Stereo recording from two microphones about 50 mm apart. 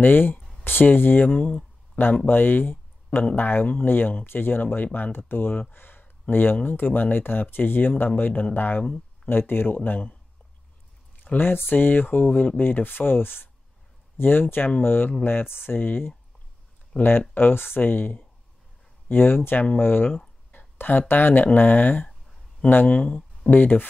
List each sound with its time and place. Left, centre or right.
0.0 s speech: left
11.3 s speech: left
16.9 s speech: left
17.3 s speech: left
20.1 s a sound: left
20.7 s speech: left